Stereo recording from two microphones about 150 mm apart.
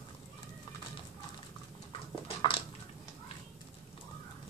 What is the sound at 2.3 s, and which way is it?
Dog, 35° left (ahead or behind).